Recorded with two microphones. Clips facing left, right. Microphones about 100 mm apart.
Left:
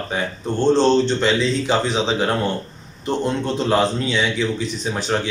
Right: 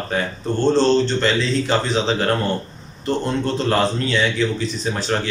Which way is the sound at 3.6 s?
15° left (ahead or behind).